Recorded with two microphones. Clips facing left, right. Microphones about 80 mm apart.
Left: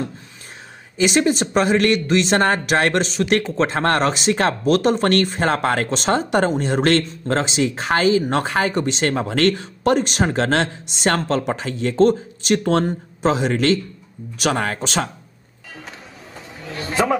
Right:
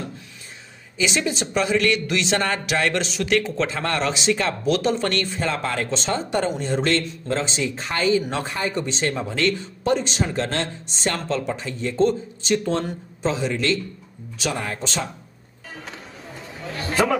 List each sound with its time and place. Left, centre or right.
0.9 s speech: left
11.1 s speech: left